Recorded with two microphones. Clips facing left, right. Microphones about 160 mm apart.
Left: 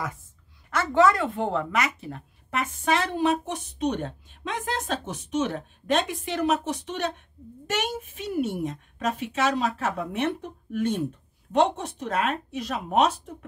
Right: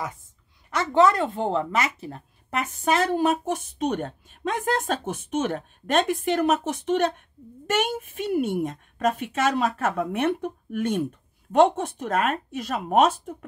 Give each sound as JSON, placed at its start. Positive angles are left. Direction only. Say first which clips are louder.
{"t": 0.7, "sound": "speech", "louder": "right 1 dB", "side_deg": -20}